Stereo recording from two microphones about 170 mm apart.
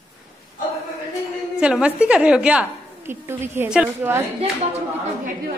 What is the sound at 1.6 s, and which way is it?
A woman's voice, 5° right (ahead or behind).